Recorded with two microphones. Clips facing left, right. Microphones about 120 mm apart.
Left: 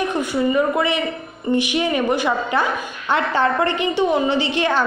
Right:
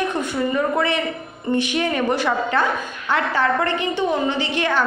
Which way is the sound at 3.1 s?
25° left (ahead or behind).